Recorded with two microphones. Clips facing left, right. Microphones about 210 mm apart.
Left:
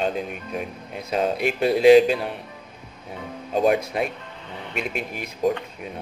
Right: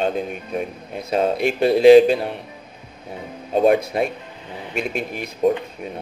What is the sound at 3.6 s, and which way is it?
Speech, 40° right (ahead or behind).